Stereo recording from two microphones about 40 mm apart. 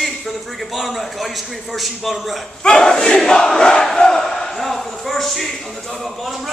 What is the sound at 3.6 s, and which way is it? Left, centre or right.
Crowd, centre.